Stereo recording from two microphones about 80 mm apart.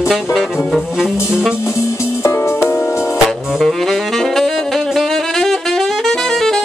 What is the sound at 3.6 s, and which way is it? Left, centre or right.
Saxophone, centre.